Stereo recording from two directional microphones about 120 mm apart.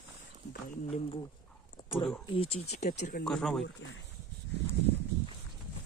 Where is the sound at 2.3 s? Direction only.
55° left (ahead or behind); by 3.1 s 75° left (ahead or behind).